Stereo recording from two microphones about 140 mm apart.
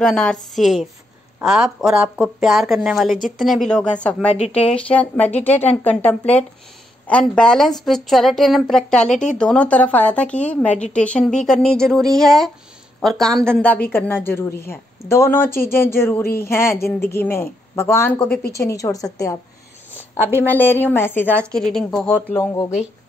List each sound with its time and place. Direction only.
0.0 s a woman's voice: 5° left (ahead or behind); by 19.3 s 25° left (ahead or behind)
20.2 s speech: 15° right (ahead or behind)
20.4 s speech: 15° left (ahead or behind)
21.5 s a woman's voice: 5° left (ahead or behind)
22.4 s a woman's voice: 25° left (ahead or behind)